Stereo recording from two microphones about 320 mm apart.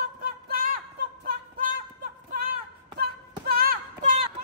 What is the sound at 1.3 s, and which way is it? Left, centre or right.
Music, right.